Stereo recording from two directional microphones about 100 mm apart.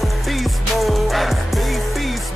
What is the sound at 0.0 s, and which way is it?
Music, centre (ahead or behind).